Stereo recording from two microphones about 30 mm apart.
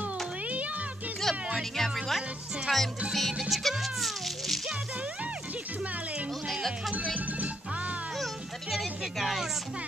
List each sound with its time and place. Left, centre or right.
1.3 s music: centre
2.7 s speech: centre
3.1 s music: centre
7.2 s music: right
8.6 s music: centre